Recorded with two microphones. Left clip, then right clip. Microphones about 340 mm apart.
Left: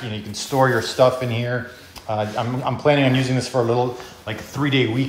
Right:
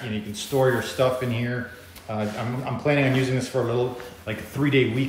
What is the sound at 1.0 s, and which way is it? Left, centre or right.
Speech, centre.